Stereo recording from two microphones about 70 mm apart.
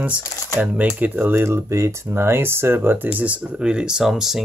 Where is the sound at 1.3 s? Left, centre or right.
Right.